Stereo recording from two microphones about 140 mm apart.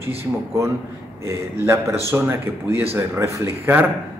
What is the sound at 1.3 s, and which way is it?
Speech, 20° right (ahead or behind).